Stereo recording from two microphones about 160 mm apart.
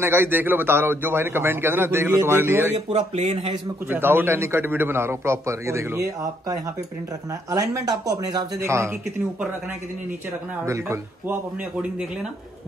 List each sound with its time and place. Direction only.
0.0 s a man's voice: 15° right (ahead or behind)
2.9 s speech: 40° right (ahead or behind)
3.9 s a man's voice: 15° right (ahead or behind)
10.6 s a man's voice: 15° right (ahead or behind)
11.8 s speech: 5° right (ahead or behind)